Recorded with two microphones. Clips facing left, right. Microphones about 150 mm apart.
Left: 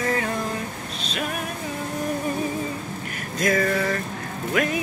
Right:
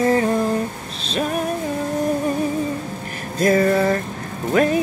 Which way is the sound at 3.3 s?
30° right (ahead or behind).